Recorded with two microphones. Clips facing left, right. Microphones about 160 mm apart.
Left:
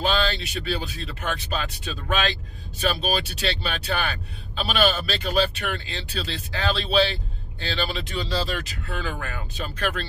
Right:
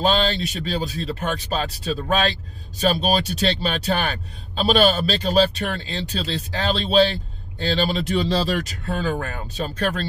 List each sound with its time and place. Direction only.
0.0 s speech: 35° right (ahead or behind)